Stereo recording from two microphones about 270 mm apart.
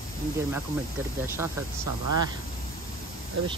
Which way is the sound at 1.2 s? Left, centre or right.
Centre.